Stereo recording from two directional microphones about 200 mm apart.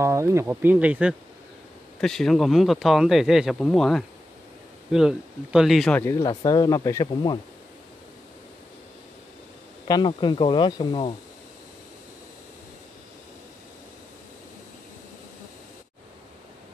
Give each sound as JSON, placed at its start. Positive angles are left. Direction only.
{"t": 0.0, "sound": "speech", "side_deg": -15}
{"t": 9.8, "sound": "speech", "side_deg": 20}